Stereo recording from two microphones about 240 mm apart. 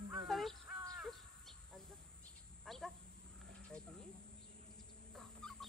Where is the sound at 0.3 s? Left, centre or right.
Centre.